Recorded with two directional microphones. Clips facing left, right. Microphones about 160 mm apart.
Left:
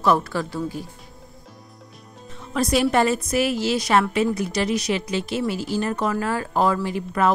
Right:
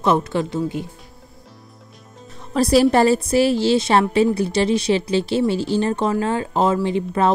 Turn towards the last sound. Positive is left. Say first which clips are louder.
# right 3 dB
turn(degrees=-25)  # may be behind; listen again after turning